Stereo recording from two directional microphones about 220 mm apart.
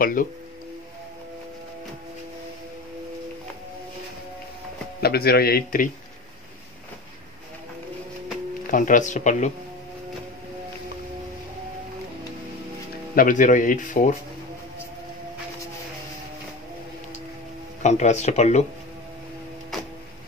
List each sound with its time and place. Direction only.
0.0 s speech: 40° left (ahead or behind)
5.0 s a man's voice: 45° left (ahead or behind)
8.6 s speech: 35° left (ahead or behind)
13.1 s speech: 40° left (ahead or behind)
17.8 s speech: 30° left (ahead or behind)